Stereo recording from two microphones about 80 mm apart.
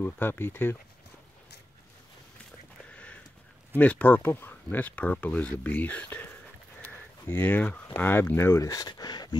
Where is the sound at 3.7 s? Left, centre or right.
Left.